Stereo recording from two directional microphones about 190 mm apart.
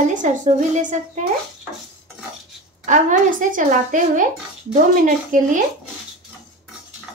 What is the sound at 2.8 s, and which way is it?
Speech, 40° right (ahead or behind).